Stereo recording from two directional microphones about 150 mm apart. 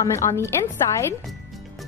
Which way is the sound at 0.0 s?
20° left (ahead or behind).